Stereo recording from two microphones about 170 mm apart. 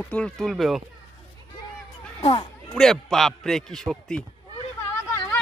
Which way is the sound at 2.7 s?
Centre (ahead or behind).